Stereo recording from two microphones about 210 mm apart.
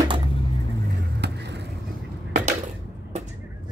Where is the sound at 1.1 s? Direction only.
55° right (ahead or behind).